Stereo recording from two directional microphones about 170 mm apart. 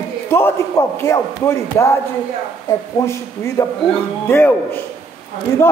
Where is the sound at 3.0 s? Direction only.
15° left (ahead or behind).